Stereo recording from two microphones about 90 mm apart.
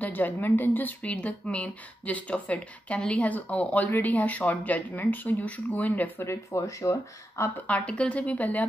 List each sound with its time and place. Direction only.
0.0 s a woman's voice: 20° left (ahead or behind)
6.2 s speech: 30° left (ahead or behind)
7.6 s a woman's voice: 15° left (ahead or behind)